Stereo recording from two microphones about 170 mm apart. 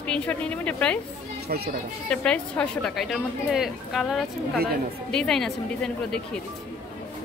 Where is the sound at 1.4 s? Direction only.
70° right (ahead or behind).